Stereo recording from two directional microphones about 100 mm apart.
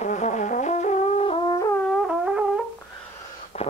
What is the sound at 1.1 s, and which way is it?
Brass instrument, 70° left (ahead or behind).